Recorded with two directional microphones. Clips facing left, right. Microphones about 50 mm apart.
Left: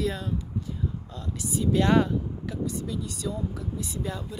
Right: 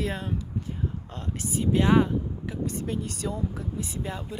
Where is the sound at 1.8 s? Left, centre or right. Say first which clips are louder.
Right 1 dB; centre.